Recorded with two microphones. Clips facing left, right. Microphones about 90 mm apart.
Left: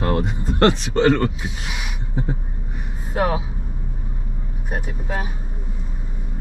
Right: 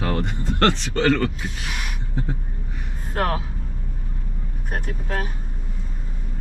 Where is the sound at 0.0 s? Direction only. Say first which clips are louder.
Left 3 dB; 5° left (ahead or behind).